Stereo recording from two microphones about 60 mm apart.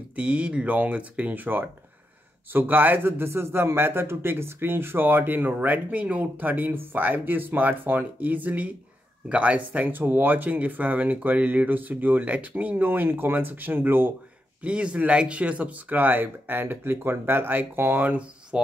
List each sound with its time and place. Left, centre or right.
0.1 s a man's voice: right
14.6 s speech: centre